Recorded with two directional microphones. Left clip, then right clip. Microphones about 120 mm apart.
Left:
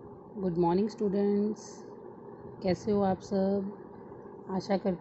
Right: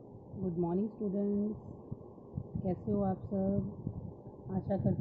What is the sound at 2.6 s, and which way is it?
Speech, 20° left (ahead or behind).